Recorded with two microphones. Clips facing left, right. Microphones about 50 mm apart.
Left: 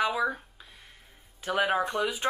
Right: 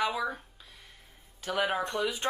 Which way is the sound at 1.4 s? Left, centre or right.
Centre.